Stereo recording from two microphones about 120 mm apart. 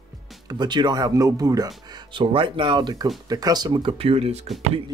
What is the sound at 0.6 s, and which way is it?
Speech, 35° right (ahead or behind).